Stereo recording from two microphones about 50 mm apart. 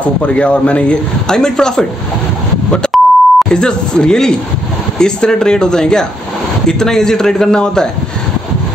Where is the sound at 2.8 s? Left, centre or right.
Centre.